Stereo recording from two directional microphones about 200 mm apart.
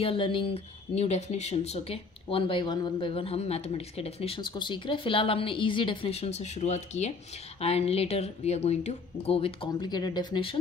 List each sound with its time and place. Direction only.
0.0 s speech: 25° left (ahead or behind)